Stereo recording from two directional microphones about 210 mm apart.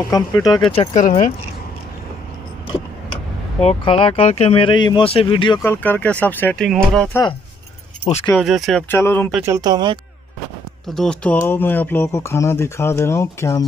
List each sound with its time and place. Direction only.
0.1 s speech: 15° left (ahead or behind)
1.0 s speech: 35° left (ahead or behind)
3.6 s speech: 25° left (ahead or behind)
5.6 s speech: 10° left (ahead or behind)
8.3 s speech: centre (ahead or behind)
8.8 s speech: 10° left (ahead or behind)
9.5 s speech: 20° right (ahead or behind)
11.0 s speech: 5° left (ahead or behind)